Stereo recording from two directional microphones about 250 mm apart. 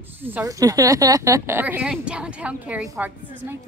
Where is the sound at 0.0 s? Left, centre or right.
Centre.